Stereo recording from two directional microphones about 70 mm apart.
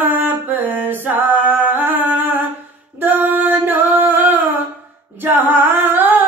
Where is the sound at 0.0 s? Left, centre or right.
Right.